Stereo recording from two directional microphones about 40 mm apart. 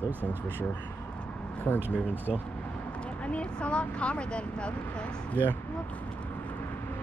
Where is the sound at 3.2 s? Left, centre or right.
Left.